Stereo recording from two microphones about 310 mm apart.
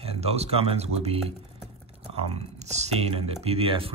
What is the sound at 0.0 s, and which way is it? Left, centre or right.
Speech, centre.